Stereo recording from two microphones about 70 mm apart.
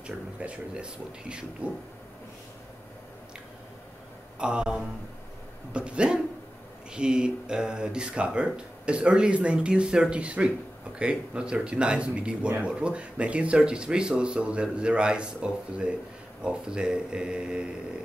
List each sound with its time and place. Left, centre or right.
0.0 s speech: centre
4.4 s speech: centre